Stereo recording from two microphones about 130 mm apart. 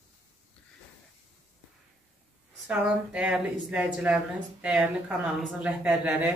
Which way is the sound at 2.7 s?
10° right (ahead or behind).